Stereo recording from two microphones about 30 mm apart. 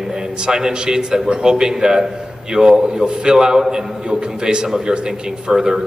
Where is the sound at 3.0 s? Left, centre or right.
Right.